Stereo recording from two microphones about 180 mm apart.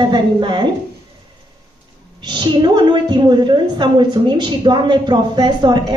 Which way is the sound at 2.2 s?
25° right (ahead or behind).